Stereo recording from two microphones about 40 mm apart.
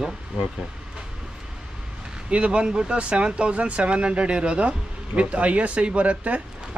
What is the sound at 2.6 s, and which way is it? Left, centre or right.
Speech, centre.